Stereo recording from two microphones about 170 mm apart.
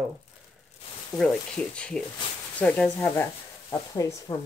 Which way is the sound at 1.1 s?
20° left (ahead or behind).